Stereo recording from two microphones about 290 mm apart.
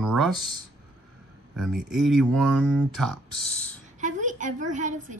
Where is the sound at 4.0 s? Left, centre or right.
Right.